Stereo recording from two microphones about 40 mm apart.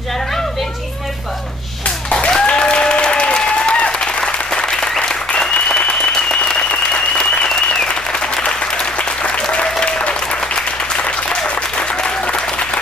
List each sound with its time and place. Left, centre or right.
2.2 s applause: left
8.4 s applause: left